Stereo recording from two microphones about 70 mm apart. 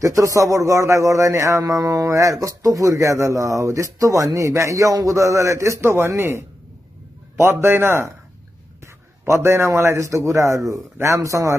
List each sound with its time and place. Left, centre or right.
0.0 s a man's voice: right